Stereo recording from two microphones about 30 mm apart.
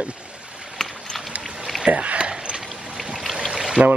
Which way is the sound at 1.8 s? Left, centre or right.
Right.